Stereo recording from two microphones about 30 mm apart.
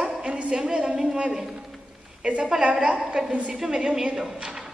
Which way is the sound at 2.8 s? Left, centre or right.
Right.